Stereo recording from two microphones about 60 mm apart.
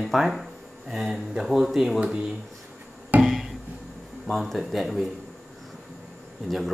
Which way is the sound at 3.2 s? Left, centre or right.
Centre.